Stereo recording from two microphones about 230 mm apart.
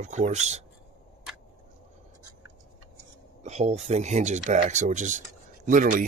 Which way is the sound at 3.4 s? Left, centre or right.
Right.